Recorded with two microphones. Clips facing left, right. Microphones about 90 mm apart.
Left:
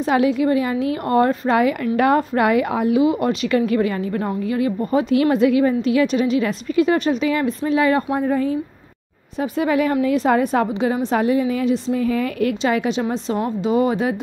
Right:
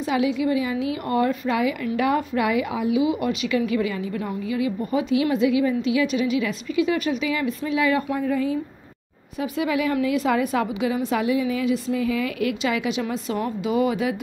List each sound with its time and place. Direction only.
0.0 s a woman's voice: 45° left (ahead or behind)